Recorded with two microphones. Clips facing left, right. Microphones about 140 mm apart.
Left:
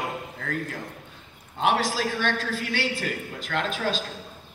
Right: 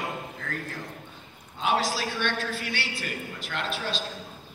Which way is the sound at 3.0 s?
45° left (ahead or behind).